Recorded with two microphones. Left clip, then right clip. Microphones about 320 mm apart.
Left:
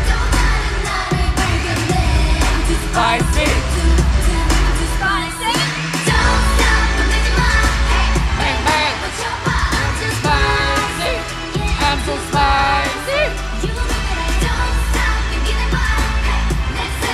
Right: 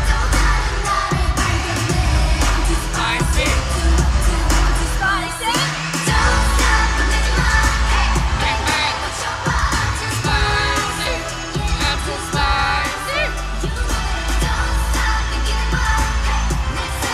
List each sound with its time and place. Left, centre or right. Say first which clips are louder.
11.8 s music: left 4 dB; centre